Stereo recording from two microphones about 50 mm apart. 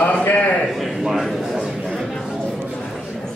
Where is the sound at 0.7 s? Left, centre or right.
Centre.